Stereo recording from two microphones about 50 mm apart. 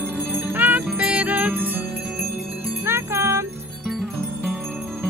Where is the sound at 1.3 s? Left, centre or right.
Right.